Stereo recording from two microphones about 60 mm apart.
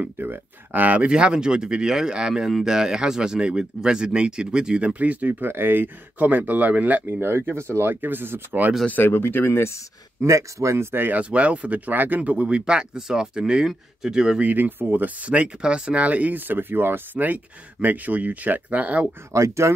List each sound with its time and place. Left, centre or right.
0.2 s speech: right
1.0 s speech: centre
5.5 s speech: right
7.1 s speech: right
8.8 s speech: left
10.2 s speech: right
11.1 s speech: right
12.2 s speech: centre
14.4 s speech: right
19.3 s speech: right